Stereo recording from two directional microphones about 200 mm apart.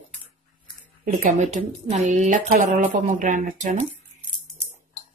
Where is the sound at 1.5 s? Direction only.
35° right (ahead or behind).